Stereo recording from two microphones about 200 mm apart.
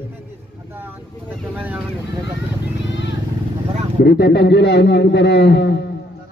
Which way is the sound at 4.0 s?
55° left (ahead or behind).